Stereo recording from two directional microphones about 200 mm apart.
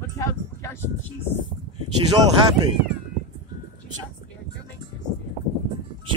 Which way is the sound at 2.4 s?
20° right (ahead or behind).